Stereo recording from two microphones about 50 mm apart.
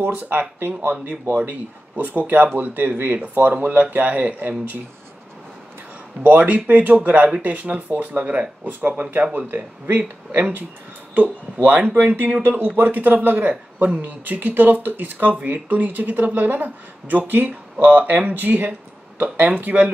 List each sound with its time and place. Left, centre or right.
0.0 s a man's voice: right
6.2 s a man's voice: right
7.2 s speech: centre
7.5 s a man's voice: right
11.9 s a man's voice: right
18.7 s a sound: right
19.3 s a man's voice: right